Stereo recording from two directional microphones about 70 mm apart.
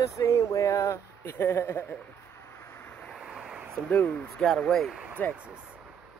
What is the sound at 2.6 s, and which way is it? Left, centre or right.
Vehicle, left.